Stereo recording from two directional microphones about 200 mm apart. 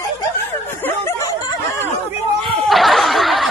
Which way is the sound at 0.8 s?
15° left (ahead or behind).